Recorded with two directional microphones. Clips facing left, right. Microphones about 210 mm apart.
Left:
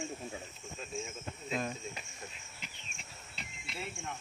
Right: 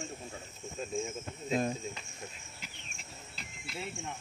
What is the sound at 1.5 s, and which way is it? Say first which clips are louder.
Speech: right 5 dB; 30° right (ahead or behind).